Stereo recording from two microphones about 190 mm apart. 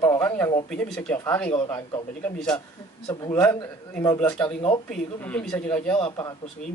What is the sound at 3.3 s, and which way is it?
A man's voice, 10° left (ahead or behind).